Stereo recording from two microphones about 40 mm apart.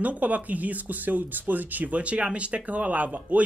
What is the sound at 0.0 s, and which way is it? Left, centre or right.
Speech, right.